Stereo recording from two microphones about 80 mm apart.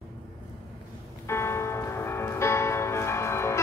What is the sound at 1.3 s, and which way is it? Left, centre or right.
Music, left.